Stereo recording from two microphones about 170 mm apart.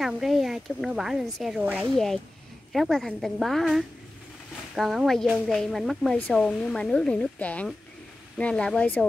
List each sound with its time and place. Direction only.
0.0 s speech: centre (ahead or behind)